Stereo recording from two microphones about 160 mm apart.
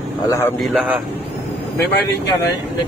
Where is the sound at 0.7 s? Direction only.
10° right (ahead or behind).